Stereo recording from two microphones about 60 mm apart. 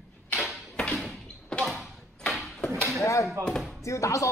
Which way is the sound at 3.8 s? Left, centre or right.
Left.